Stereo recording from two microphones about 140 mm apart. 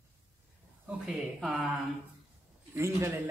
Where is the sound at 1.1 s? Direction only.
5° right (ahead or behind).